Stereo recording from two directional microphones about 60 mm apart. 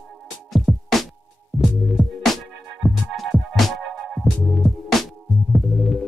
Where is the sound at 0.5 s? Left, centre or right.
Centre.